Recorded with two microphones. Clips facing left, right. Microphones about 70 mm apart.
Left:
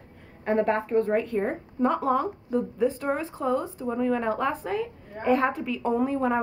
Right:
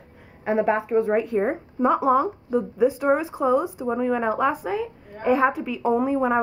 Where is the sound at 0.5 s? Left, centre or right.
Centre.